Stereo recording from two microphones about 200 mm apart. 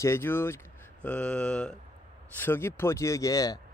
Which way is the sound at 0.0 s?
10° left (ahead or behind).